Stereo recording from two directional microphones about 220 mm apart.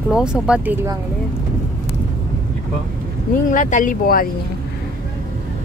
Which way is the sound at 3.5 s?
35° left (ahead or behind).